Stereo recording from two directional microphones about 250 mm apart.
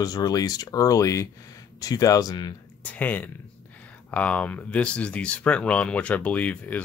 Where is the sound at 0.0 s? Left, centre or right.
Centre.